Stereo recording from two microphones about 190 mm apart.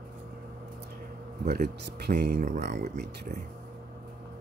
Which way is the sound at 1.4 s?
55° right (ahead or behind).